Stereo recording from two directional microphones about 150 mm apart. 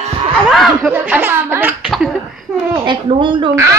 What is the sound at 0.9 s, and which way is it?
Speech, 10° right (ahead or behind).